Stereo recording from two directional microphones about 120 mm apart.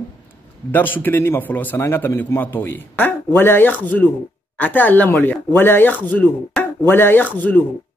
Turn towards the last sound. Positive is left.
turn(degrees=15)  # may be behind; listen again after turning